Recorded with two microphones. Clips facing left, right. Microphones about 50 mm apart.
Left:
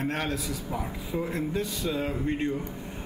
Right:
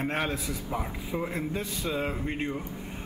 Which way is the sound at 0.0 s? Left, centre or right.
Centre.